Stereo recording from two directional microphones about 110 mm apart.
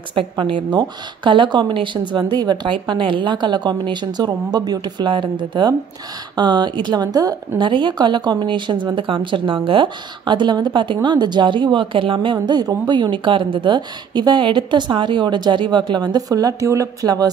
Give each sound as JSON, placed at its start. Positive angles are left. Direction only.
{"t": 0.1, "sound": "a woman's voice", "side_deg": -50}
{"t": 12.4, "sound": "a woman's voice", "side_deg": -40}